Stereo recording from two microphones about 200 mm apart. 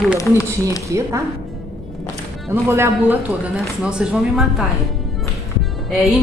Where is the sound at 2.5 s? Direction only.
10° right (ahead or behind).